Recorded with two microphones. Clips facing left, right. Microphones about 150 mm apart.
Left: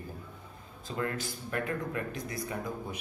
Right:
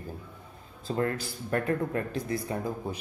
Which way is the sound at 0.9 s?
40° right (ahead or behind).